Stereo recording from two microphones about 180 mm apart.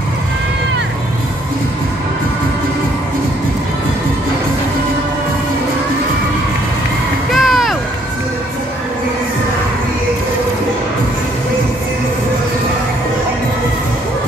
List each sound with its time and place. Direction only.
7.2 s music: centre (ahead or behind)